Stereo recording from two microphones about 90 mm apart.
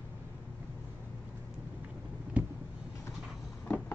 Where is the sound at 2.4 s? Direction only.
15° right (ahead or behind).